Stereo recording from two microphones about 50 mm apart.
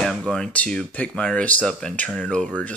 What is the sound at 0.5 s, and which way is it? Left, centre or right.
Speech, left.